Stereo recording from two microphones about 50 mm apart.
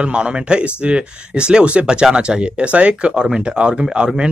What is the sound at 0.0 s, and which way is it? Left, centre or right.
Speech, right.